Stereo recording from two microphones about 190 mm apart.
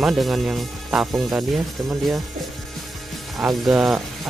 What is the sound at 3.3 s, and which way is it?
Speech, centre (ahead or behind).